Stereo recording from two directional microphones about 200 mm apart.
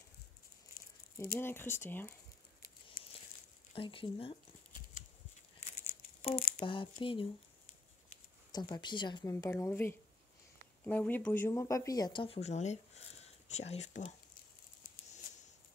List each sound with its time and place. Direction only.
1.4 s speech: 10° left (ahead or behind)
3.7 s a woman's voice: 25° left (ahead or behind)
6.2 s a woman's voice: 25° left (ahead or behind)
8.5 s a woman's voice: 20° left (ahead or behind); by 14.1 s 35° left (ahead or behind)